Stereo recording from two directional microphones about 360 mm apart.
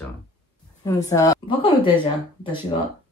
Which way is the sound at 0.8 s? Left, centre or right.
Centre.